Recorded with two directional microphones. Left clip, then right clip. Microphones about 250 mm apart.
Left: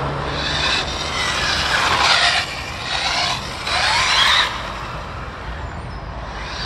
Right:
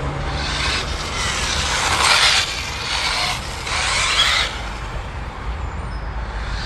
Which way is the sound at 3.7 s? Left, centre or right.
Right.